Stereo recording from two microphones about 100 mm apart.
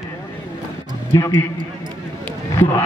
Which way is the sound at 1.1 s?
30° left (ahead or behind).